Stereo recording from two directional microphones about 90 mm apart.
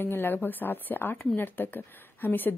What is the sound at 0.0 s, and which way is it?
Speech, 25° left (ahead or behind).